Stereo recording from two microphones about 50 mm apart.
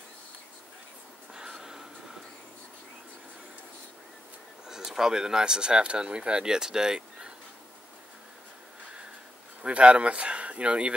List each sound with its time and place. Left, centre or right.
1.3 s snort: centre
4.6 s speech: centre
9.6 s speech: right